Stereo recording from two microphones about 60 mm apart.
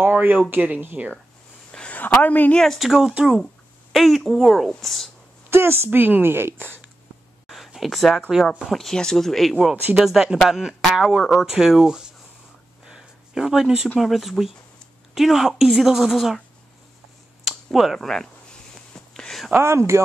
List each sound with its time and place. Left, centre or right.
0.0 s speech: right
1.7 s a sound: centre
2.2 s speech: left
2.6 s speech: centre
3.9 s speech: centre
5.5 s speech: right
5.9 s speech: right
7.4 s a sound: centre
8.7 s speech: centre
12.8 s a sound: centre
13.9 s speech: centre
17.5 s a sound: centre
19.6 s speech: right